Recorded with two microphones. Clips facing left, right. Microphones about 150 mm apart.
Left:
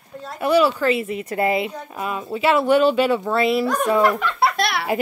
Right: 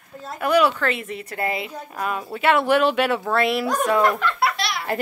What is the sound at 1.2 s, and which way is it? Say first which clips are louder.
Speech: left 6 dB; 25° left (ahead or behind).